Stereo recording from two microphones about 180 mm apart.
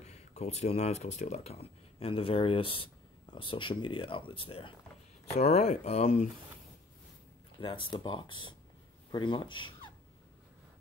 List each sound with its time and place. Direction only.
0.0 s speech: 35° left (ahead or behind)
7.6 s speech: 30° left (ahead or behind)